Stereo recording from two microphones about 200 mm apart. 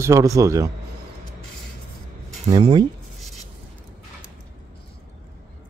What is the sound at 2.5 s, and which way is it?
Speech, 20° right (ahead or behind).